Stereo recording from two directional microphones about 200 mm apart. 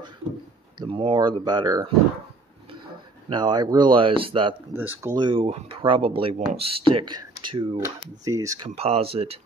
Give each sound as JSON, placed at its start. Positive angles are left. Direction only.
{"t": 0.7, "sound": "speech", "side_deg": -25}
{"t": 3.3, "sound": "speech", "side_deg": -20}